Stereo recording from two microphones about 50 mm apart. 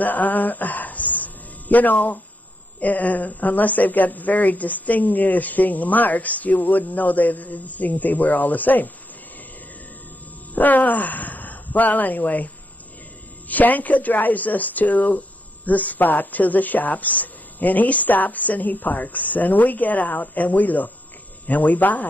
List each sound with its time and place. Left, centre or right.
0.0 s a sound: left
2.8 s speech: left
10.5 s speech: left
13.5 s speech: left